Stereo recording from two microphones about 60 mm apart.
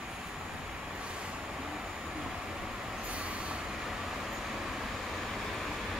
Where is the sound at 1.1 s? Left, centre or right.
Centre.